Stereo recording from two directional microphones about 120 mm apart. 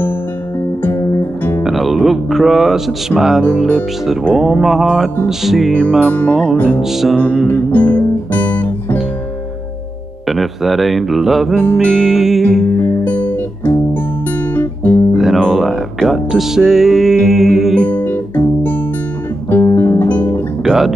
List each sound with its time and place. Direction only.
0.8 s music: 20° left (ahead or behind)
1.6 s music: centre (ahead or behind)
6.0 s music: 10° left (ahead or behind)
6.8 s music: 5° right (ahead or behind)
7.4 s music: 15° left (ahead or behind)
10.2 s music: centre (ahead or behind)
13.0 s music: 15° left (ahead or behind)
15.1 s music: centre (ahead or behind)
17.9 s music: 15° left (ahead or behind)
20.6 s speech: 5° right (ahead or behind)